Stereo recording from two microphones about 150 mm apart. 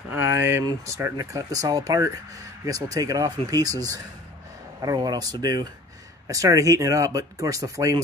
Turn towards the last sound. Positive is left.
turn(degrees=-20)  # may be behind; listen again after turning